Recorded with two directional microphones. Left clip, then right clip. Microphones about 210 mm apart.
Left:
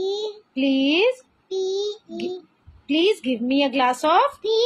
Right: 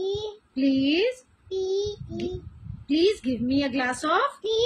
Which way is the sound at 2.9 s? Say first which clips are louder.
Left 3 dB; 20° right (ahead or behind).